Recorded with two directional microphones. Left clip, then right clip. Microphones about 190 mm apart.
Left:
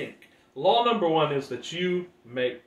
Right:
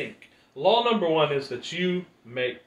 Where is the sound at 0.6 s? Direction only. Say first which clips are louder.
Even; 15° left (ahead or behind).